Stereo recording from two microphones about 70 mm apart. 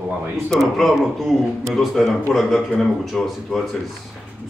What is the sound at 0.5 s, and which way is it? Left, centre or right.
A man's voice, centre.